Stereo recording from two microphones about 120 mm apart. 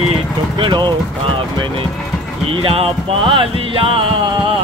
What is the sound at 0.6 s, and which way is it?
Music, 40° right (ahead or behind).